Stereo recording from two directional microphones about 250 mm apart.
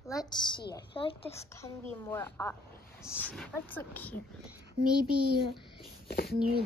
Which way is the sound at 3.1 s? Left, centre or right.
Centre.